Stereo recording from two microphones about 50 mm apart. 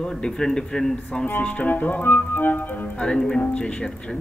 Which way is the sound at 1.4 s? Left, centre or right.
Left.